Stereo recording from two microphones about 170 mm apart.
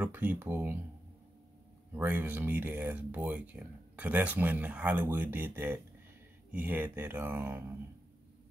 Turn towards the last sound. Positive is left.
turn(degrees=-15)  # may be behind; listen again after turning